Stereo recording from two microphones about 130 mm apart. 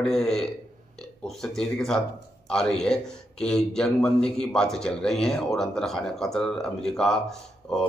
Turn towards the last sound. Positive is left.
turn(degrees=5)  # may be behind; listen again after turning